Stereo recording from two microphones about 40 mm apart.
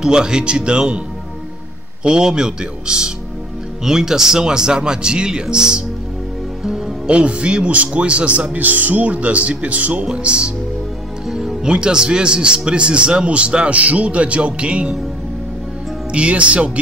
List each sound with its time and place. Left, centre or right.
0.0 s speech: centre
2.0 s speech: centre
7.1 s a man's voice: right
10.0 s speech: right
11.2 s speech: centre
16.1 s a man's voice: right